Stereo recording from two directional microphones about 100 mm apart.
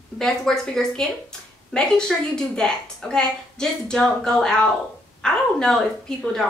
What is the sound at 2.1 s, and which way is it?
A woman's voice, centre (ahead or behind).